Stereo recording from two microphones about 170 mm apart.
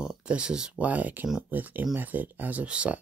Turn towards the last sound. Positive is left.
turn(degrees=-5)  # may be behind; listen again after turning